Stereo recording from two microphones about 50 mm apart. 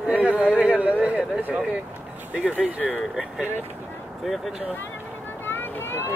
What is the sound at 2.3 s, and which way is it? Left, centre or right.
Speech, right.